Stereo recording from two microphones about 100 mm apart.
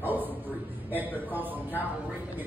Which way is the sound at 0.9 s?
20° right (ahead or behind).